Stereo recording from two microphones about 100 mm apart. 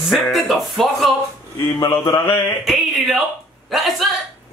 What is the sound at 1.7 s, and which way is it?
Mantra, 40° left (ahead or behind).